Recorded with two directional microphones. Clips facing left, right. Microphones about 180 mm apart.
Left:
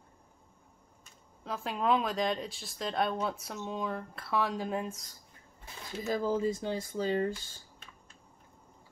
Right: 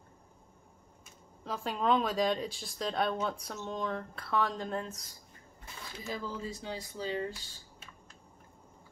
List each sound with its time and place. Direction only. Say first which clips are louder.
1.4 s speech: even; centre (ahead or behind)
6.0 s speech: left 9 dB; 45° left (ahead or behind)